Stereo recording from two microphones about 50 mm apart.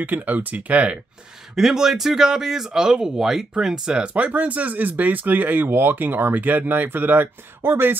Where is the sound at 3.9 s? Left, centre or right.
Right.